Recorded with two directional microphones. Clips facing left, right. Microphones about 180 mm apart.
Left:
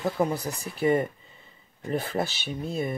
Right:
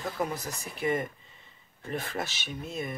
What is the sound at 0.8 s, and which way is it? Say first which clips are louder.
Speech: left 6 dB; 35° left (ahead or behind).